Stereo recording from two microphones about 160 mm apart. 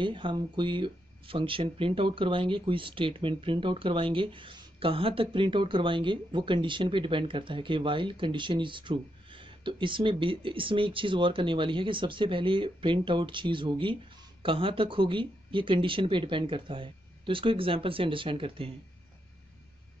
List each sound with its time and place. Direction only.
0.0 s speech: 30° right (ahead or behind)